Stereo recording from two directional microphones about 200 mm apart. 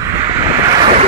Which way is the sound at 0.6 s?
20° right (ahead or behind).